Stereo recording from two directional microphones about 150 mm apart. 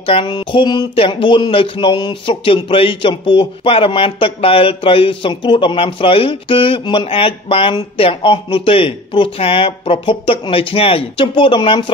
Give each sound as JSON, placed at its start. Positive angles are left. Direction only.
{"t": 0.0, "sound": "speech", "side_deg": 35}